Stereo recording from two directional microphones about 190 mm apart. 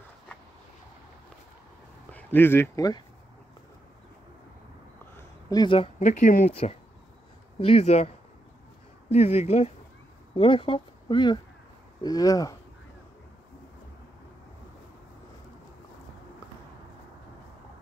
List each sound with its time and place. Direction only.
2.1 s speech: 10° left (ahead or behind)
5.1 s a sound: 20° left (ahead or behind)
5.9 s speech: 40° left (ahead or behind)
9.1 s speech: 35° left (ahead or behind); by 12.5 s 20° left (ahead or behind)